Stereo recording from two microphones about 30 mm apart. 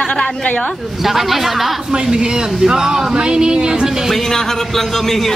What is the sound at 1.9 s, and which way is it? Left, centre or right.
Speech, right.